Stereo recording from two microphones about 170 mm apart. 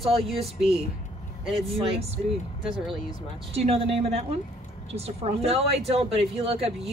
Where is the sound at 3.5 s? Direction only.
35° right (ahead or behind).